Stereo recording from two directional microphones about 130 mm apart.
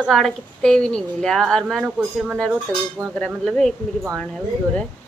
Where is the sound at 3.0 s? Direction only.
20° right (ahead or behind).